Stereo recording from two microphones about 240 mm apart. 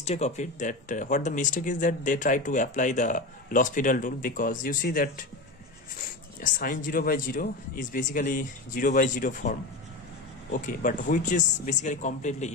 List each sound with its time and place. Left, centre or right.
0.0 s speech: left
6.4 s speech: left